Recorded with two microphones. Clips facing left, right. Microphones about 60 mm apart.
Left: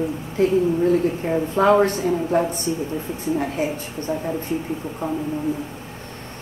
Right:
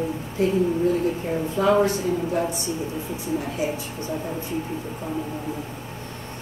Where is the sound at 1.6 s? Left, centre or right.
Left.